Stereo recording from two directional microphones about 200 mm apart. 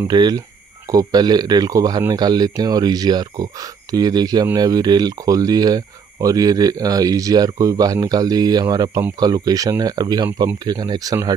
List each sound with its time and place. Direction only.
0.0 s speech: 20° right (ahead or behind)